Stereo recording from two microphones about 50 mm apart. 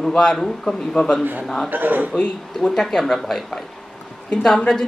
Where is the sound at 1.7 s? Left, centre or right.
Right.